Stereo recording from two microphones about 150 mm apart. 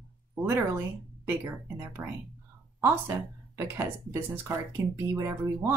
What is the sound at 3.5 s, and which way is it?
Speech, 15° right (ahead or behind).